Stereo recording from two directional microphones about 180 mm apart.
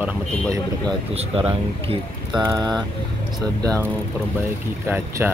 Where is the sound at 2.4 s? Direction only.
20° right (ahead or behind).